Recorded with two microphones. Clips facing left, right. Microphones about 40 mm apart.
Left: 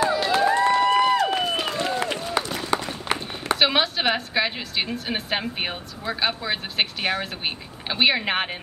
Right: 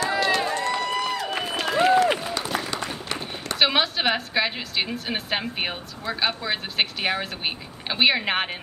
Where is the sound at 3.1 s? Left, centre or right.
Left.